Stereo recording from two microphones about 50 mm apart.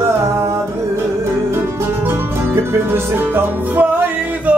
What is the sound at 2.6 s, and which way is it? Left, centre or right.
Music, right.